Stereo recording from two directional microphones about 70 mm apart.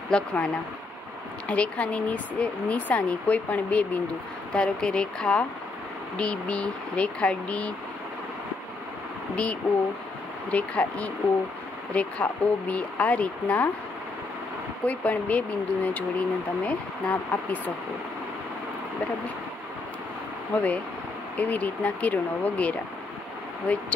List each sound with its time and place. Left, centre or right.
0.1 s speech: centre
1.5 s speech: centre
4.5 s speech: centre
9.3 s speech: centre
14.9 s speech: left
20.5 s speech: centre